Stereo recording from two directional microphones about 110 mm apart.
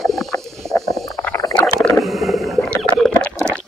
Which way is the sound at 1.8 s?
Centre (ahead or behind).